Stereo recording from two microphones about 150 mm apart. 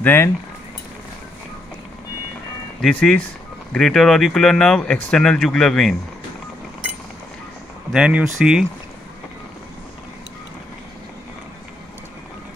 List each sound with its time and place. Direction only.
0.0 s speech: 15° left (ahead or behind)
2.8 s speech: 5° left (ahead or behind)
7.9 s speech: 5° right (ahead or behind)